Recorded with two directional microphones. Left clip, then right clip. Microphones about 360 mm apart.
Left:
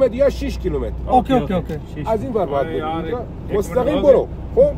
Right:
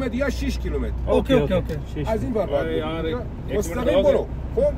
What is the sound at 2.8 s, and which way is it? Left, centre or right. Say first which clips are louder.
Speech: left 3 dB; centre.